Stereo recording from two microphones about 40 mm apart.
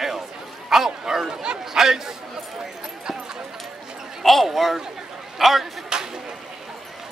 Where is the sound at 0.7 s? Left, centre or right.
Centre.